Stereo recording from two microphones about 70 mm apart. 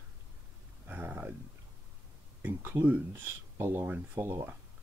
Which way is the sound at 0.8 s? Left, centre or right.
Right.